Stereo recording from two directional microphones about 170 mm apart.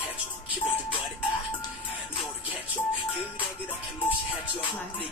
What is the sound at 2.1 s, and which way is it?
Music, 30° left (ahead or behind).